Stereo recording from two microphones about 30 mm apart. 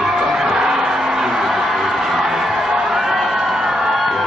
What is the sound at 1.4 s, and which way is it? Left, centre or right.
Music, centre.